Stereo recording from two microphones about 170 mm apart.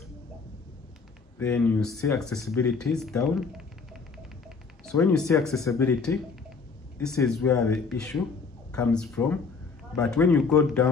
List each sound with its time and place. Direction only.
1.4 s a man's voice: 10° left (ahead or behind)
2.4 s speech: 15° left (ahead or behind)
2.8 s a man's voice: 5° left (ahead or behind)
3.2 s music: centre (ahead or behind)
4.9 s speech: 5° left (ahead or behind)
7.2 s a man's voice: 5° left (ahead or behind)